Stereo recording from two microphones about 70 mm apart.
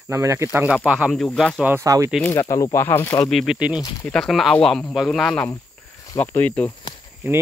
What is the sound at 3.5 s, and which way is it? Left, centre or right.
Speech, centre.